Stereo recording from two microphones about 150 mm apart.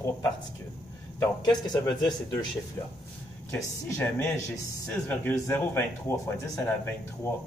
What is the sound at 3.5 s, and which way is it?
Speech, 20° left (ahead or behind).